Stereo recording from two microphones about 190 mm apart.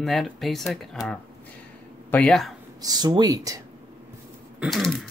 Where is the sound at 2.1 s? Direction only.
5° left (ahead or behind).